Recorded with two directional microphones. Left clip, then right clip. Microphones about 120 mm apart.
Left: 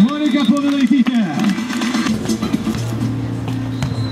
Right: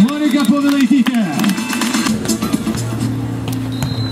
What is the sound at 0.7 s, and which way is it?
Run, 45° right (ahead or behind).